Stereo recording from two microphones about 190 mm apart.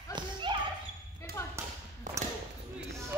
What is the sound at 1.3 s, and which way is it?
Basketball bounce, 55° right (ahead or behind).